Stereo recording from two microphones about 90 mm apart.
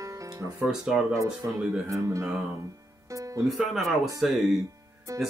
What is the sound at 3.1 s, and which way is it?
Music, 35° right (ahead or behind).